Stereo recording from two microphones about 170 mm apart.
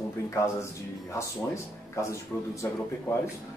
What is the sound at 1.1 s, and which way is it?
Speech, 15° left (ahead or behind).